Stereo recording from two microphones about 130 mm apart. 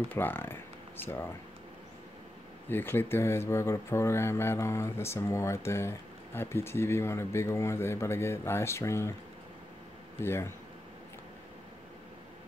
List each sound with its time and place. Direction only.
0.1 s speech: 15° left (ahead or behind)
2.7 s speech: 15° left (ahead or behind)
10.2 s speech: 20° left (ahead or behind)